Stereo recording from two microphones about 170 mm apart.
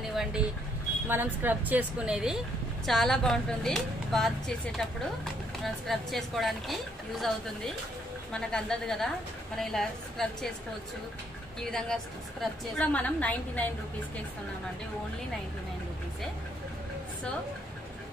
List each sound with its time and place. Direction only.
0.1 s a sound: centre (ahead or behind)
1.0 s speech: 10° right (ahead or behind)
5.6 s speech: centre (ahead or behind)
11.7 s a woman's voice: 5° left (ahead or behind)